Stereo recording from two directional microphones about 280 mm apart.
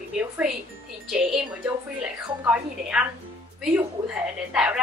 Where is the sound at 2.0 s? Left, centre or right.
Centre.